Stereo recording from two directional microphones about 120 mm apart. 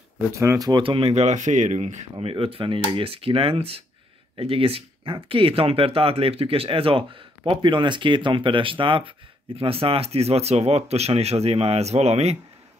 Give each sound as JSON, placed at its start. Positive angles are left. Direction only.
{"t": 0.3, "sound": "speech", "side_deg": -25}
{"t": 0.8, "sound": "speech", "side_deg": -55}